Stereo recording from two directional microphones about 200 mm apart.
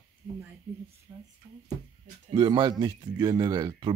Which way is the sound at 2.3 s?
25° right (ahead or behind).